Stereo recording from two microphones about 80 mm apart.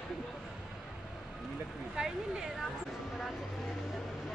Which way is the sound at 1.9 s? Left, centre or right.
Centre.